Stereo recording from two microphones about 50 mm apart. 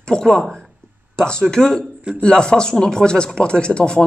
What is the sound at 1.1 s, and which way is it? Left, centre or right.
Speech, centre.